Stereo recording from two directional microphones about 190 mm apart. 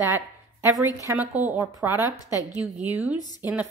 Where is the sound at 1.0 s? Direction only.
10° right (ahead or behind).